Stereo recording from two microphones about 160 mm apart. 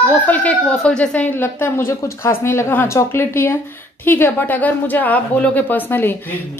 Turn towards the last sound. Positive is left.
turn(degrees=10)  # may be behind; listen again after turning